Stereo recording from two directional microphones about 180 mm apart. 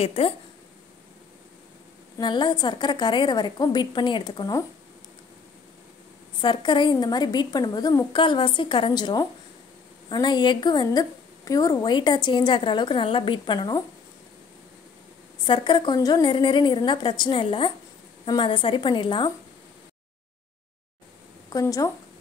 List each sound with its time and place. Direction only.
0.0 s speech: 30° left (ahead or behind)
2.1 s a woman's voice: 25° left (ahead or behind)
6.4 s a woman's voice: 25° left (ahead or behind)
15.4 s a woman's voice: 25° left (ahead or behind)
21.5 s speech: 20° left (ahead or behind)